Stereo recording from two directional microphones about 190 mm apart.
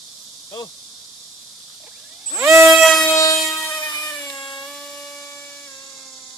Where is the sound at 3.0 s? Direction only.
15° left (ahead or behind).